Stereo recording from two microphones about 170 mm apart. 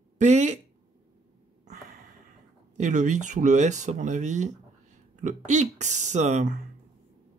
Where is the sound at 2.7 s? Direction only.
45° right (ahead or behind).